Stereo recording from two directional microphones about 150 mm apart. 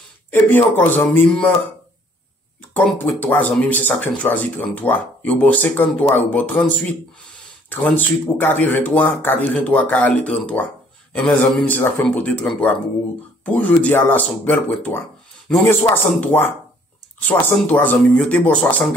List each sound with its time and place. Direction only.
0.3 s speech: 15° left (ahead or behind)
2.7 s speech: 10° left (ahead or behind)